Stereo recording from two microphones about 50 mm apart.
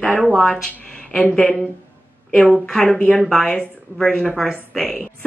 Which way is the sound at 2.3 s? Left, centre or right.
Centre.